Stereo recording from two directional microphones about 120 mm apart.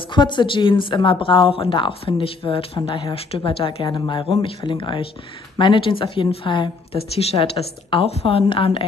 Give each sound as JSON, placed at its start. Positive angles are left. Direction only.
{"t": 0.1, "sound": "speech", "side_deg": 40}